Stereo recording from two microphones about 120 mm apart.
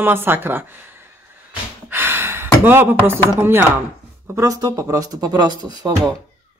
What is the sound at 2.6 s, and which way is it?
Speech, 20° right (ahead or behind).